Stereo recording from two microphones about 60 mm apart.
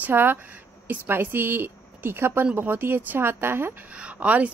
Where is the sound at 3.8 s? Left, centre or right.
Right.